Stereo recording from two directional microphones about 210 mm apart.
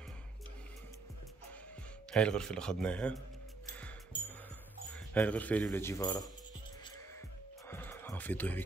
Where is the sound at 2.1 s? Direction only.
5° left (ahead or behind).